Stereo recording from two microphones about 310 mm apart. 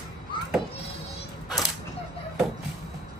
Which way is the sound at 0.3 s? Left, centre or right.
Centre.